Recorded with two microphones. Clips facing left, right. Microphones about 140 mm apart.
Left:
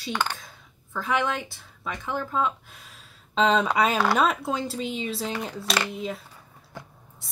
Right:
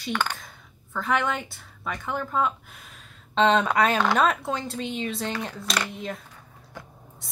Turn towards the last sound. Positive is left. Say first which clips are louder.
# left 2 dB
turn(degrees=5)  # may be behind; listen again after turning